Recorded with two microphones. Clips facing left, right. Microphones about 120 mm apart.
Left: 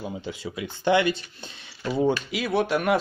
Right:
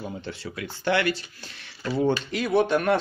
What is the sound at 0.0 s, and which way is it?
Speech, 10° left (ahead or behind).